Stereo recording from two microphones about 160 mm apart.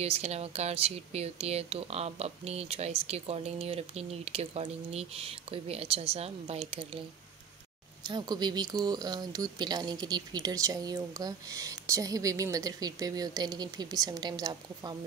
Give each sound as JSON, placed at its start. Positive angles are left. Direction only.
{"t": 0.0, "sound": "speech", "side_deg": -40}
{"t": 8.1, "sound": "speech", "side_deg": -25}